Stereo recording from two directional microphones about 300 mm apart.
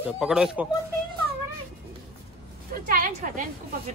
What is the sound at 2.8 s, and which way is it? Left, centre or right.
Speech, right.